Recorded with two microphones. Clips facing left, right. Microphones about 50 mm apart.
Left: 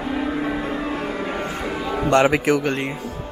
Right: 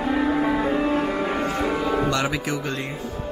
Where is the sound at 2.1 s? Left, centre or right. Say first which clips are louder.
Left 8 dB; left.